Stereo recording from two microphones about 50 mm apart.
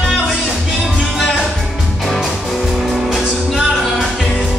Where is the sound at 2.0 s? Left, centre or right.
Centre.